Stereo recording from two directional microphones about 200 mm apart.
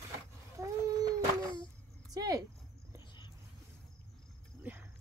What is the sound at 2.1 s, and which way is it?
Speech, 20° right (ahead or behind).